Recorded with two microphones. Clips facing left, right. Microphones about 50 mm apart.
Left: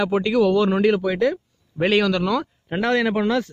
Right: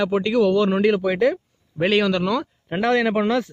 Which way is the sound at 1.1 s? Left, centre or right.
Centre.